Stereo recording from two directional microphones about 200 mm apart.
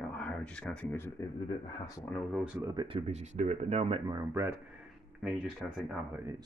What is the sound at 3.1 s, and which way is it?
Speech, 35° right (ahead or behind).